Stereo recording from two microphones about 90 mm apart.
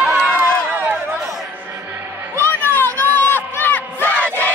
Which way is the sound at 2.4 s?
25° left (ahead or behind).